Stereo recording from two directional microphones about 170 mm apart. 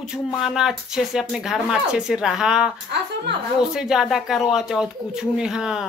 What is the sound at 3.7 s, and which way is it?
A woman's voice, 5° right (ahead or behind).